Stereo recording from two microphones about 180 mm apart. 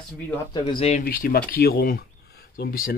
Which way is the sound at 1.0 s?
55° left (ahead or behind).